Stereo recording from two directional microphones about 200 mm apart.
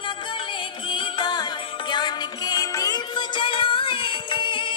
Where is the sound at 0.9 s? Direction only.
20° left (ahead or behind).